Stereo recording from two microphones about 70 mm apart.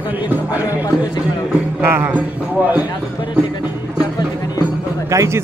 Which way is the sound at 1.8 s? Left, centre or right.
Right.